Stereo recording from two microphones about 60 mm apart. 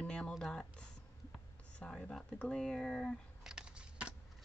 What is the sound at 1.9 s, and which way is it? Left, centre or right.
Speech, centre.